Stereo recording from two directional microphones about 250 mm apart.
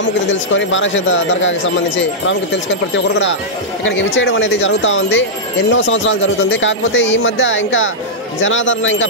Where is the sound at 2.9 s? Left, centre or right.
Left.